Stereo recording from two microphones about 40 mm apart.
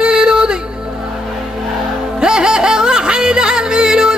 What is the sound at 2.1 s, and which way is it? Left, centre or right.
Music, centre.